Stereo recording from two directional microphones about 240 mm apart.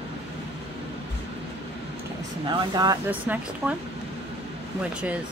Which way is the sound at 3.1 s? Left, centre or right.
Centre.